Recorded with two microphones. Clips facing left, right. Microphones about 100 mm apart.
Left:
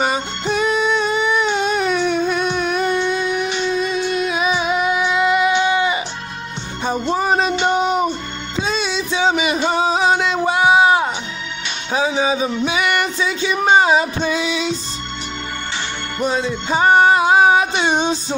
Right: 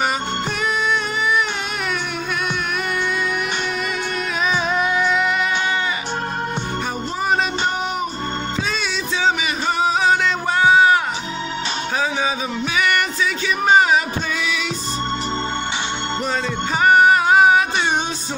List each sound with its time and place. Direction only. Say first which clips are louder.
0.7 s a sound: left 3 dB; 25° left (ahead or behind)
4.4 s music: right 2 dB; 10° left (ahead or behind)
6.9 s music: left 6 dB; 30° left (ahead or behind)
9.4 s a sound: left 3 dB; 20° left (ahead or behind)
11.9 s music: left 5 dB; 20° left (ahead or behind)
16.7 s music: left 1 dB; 25° left (ahead or behind)